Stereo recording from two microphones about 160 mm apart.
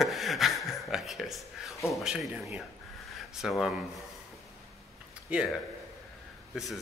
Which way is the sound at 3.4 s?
Centre (ahead or behind).